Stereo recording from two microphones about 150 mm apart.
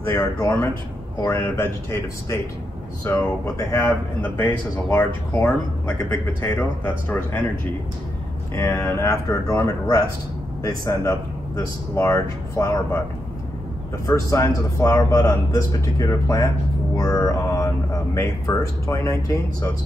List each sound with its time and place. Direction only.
0.1 s speech: 20° left (ahead or behind)
5.9 s a man's voice: 20° left (ahead or behind)
6.5 s speech: 10° left (ahead or behind)
8.5 s a man's voice: 20° left (ahead or behind)
10.9 s speech: 20° left (ahead or behind)
14.0 s a man's voice: 20° left (ahead or behind)